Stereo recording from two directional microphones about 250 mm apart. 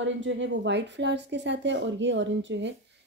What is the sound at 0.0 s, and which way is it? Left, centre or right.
A woman's voice, right.